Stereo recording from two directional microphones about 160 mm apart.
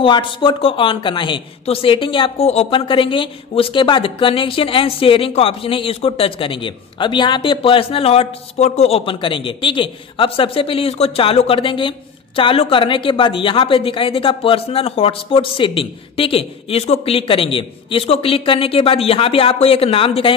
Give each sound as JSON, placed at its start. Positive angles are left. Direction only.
{"t": 0.0, "sound": "speech", "side_deg": 30}